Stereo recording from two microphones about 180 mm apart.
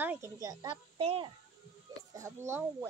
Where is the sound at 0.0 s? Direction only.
15° right (ahead or behind); by 1.3 s 30° right (ahead or behind).